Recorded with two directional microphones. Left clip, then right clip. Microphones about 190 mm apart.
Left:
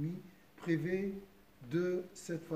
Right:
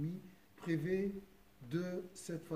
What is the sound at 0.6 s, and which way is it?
Speech, 20° right (ahead or behind).